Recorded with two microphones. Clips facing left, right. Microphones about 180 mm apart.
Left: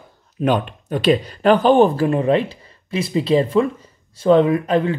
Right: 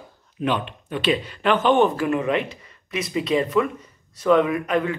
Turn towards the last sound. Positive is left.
turn(degrees=30)  # may be behind; listen again after turning